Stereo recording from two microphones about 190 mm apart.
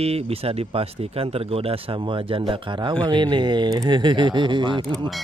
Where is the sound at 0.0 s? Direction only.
30° right (ahead or behind).